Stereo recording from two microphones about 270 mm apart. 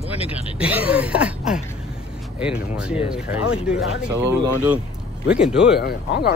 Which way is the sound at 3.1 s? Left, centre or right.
Centre.